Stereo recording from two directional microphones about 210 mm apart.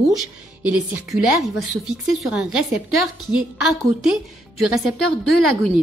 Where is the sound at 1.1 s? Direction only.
Centre (ahead or behind).